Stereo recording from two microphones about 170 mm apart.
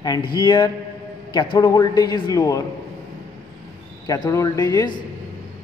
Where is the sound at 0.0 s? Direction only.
25° left (ahead or behind).